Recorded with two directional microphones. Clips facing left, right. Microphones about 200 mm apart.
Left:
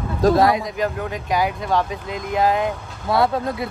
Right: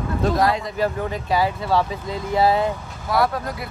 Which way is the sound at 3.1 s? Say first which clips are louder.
Left 2 dB; 25° left (ahead or behind).